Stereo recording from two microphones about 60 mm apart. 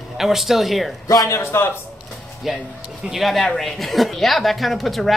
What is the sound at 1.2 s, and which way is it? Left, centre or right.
Speech, left.